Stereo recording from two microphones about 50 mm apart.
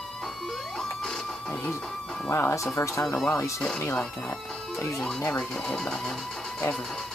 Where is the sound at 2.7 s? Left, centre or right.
Left.